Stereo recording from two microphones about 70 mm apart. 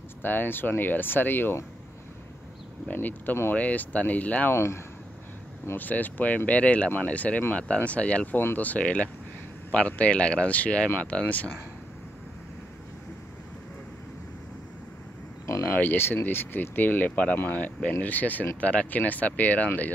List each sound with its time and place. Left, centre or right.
0.2 s speech: left
2.9 s speech: left
5.7 s speech: left
15.7 s speech: left